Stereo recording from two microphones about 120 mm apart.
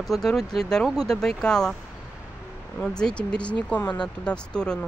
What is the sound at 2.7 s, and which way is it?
Speech, 5° left (ahead or behind).